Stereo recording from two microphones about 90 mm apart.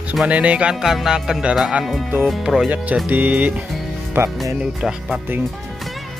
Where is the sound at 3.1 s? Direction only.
20° right (ahead or behind).